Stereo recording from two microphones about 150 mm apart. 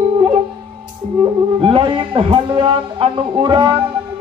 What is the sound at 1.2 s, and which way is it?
Speech, 35° right (ahead or behind).